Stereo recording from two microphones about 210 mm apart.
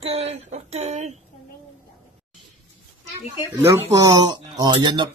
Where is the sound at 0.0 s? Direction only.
30° right (ahead or behind).